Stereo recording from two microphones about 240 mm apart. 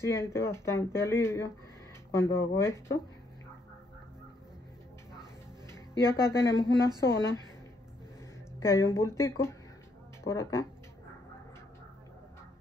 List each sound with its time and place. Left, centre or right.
0.0 s speech: centre
6.0 s a woman's voice: centre
8.5 s speech: centre